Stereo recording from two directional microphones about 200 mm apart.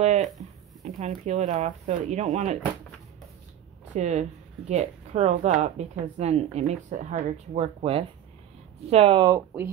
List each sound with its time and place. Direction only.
0.0 s a sound: 35° right (ahead or behind)
0.4 s speech: 35° right (ahead or behind)
3.9 s speech: 35° right (ahead or behind); by 9.7 s 15° right (ahead or behind)